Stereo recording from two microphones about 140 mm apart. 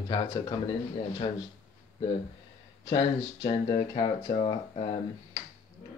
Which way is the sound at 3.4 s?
30° left (ahead or behind).